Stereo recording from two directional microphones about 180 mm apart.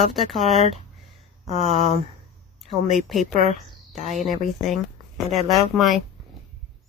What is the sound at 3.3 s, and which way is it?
Speech, 35° right (ahead or behind).